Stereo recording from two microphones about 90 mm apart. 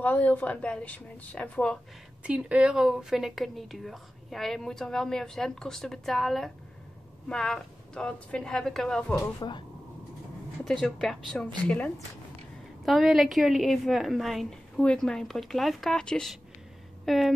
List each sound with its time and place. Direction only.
0.0 s speech: 20° left (ahead or behind)
2.2 s a woman's voice: 15° right (ahead or behind); by 9.0 s 5° left (ahead or behind)
9.4 s speech: 45° left (ahead or behind)
10.6 s a woman's voice: 5° left (ahead or behind)
11.6 s speech: 15° left (ahead or behind)
12.8 s a woman's voice: 5° right (ahead or behind)
17.0 s a sound: centre (ahead or behind)